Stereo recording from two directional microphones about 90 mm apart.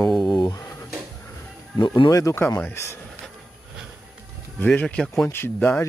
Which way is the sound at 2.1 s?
35° left (ahead or behind).